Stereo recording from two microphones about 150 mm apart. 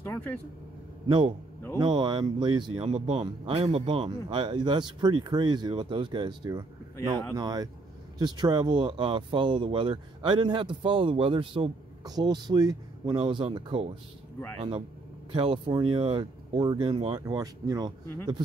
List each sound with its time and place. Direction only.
0.0 s vehicle: 15° left (ahead or behind)
1.0 s a man's voice: 30° right (ahead or behind)
15.3 s speech: 35° right (ahead or behind)